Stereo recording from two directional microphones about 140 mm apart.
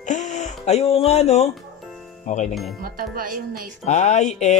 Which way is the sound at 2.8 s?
90° right.